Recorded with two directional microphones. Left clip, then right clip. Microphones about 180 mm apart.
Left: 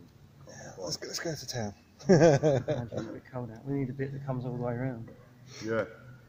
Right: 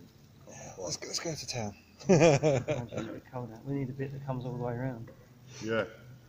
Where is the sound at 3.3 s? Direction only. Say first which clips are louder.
Left 3 dB; 50° left (ahead or behind).